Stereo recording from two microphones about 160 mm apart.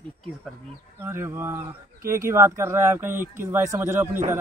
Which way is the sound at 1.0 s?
15° right (ahead or behind).